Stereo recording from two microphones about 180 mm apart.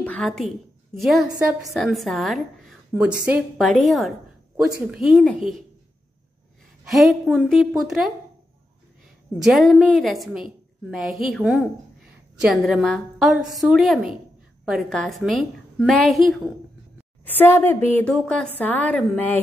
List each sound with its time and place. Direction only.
0.0 s a sound: 5° left (ahead or behind)
0.9 s a woman's voice: centre (ahead or behind)
1.2 s a woman's voice: 20° right (ahead or behind)
1.5 s a woman's voice: centre (ahead or behind)
6.9 s a woman's voice: centre (ahead or behind)
9.4 s a woman's voice: centre (ahead or behind)
17.4 s a woman's voice: 10° left (ahead or behind)